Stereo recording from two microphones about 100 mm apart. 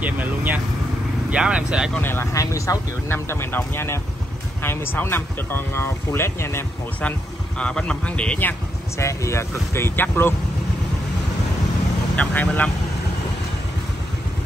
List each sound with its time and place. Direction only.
0.0 s speech: 15° right (ahead or behind)
2.0 s speech: 25° left (ahead or behind)
2.4 s speech: 35° left (ahead or behind)
7.0 s speech: 10° left (ahead or behind)
9.0 s speech: 30° left (ahead or behind)
12.2 s speech: 15° left (ahead or behind)